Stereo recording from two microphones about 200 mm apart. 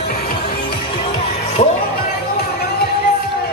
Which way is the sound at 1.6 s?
35° left (ahead or behind).